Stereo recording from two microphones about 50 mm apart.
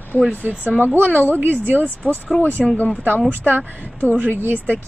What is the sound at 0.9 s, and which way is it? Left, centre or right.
Speech, right.